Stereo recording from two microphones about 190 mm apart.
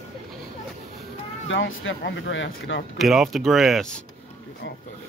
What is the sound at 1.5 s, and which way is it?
Speech, 90° left.